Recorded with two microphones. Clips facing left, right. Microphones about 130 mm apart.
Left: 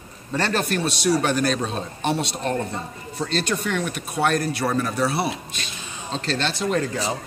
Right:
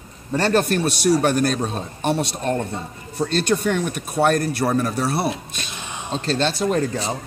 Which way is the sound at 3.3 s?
50° right (ahead or behind).